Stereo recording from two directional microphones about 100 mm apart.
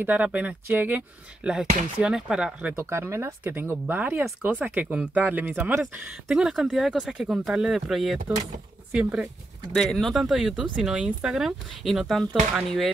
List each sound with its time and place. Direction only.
0.0 s speech: 15° right (ahead or behind)
2.7 s speech: 25° right (ahead or behind)
6.2 s speech: 5° right (ahead or behind)
8.9 s speech: 10° right (ahead or behind)
9.8 s speech: 5° left (ahead or behind)